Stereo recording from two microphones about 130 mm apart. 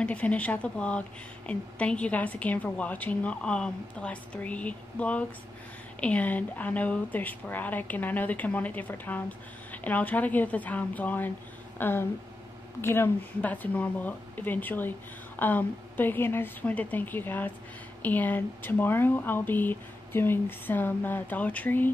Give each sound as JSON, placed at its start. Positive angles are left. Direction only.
{"t": 0.0, "sound": "a woman's voice", "side_deg": 10}